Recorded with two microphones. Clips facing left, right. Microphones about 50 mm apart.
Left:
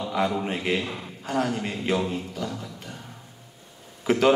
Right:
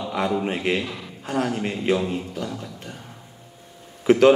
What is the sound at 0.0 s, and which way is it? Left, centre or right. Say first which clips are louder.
Speech: right 2 dB; centre.